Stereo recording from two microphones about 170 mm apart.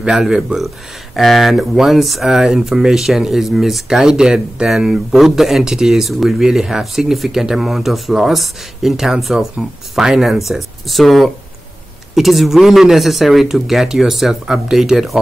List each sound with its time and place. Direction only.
0.0 s speech: 5° right (ahead or behind)